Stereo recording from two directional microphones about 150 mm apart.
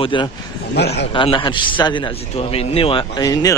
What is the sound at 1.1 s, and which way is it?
A man's voice, 35° left (ahead or behind).